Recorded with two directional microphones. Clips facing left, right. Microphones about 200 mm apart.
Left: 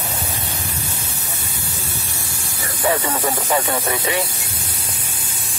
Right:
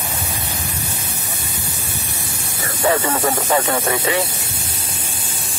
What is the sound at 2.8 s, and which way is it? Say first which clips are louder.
Snake: right 2 dB; 25° right (ahead or behind).